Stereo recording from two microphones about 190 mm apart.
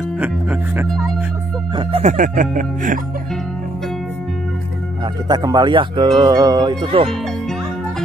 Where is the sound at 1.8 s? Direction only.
30° right (ahead or behind).